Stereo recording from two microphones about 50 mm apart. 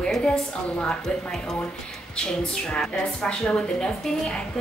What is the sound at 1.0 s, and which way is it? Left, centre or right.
Speech, centre.